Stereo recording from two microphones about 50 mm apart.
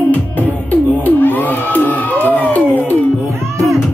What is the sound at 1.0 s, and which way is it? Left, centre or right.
Crowd, left.